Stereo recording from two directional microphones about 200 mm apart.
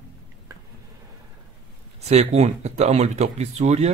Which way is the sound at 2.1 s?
35° right (ahead or behind).